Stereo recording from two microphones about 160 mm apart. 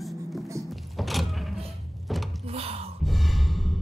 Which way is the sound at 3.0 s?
Centre (ahead or behind).